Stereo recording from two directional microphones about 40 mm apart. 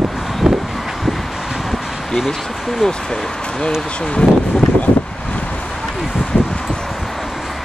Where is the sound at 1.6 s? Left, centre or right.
Centre.